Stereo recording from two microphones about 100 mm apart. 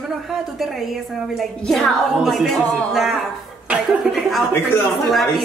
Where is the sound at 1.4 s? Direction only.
Centre (ahead or behind).